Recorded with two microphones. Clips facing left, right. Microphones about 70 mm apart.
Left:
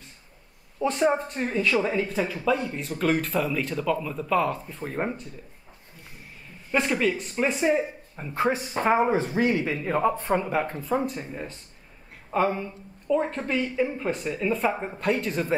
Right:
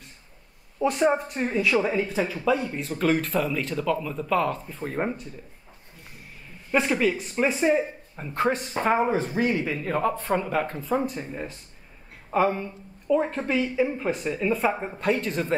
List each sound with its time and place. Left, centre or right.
0.8 s speech: centre
6.7 s speech: centre
9.1 s speech: left
9.7 s speech: centre